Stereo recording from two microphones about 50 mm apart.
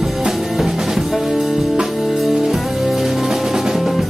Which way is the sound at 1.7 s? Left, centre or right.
Centre.